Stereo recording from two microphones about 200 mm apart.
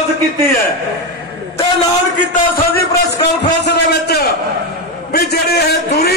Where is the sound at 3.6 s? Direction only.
55° left (ahead or behind).